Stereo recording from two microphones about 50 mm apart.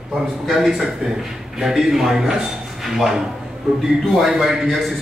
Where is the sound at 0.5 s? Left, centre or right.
Centre.